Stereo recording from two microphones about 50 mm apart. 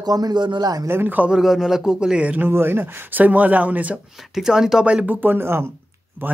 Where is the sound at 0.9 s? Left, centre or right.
Right.